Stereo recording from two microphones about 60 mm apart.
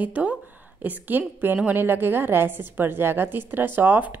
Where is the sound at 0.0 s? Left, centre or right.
Right.